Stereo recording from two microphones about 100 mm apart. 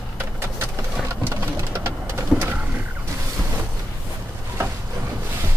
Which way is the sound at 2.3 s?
20° right (ahead or behind).